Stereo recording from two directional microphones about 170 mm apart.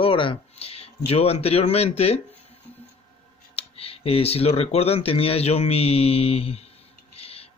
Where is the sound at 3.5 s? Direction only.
35° left (ahead or behind).